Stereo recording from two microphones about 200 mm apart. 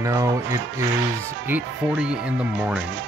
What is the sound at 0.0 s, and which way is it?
Speech, 15° right (ahead or behind).